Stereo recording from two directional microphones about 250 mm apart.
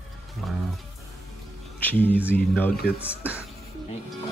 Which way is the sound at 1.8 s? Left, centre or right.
Centre.